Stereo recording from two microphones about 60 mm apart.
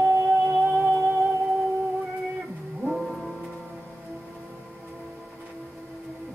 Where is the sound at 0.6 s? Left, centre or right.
Centre.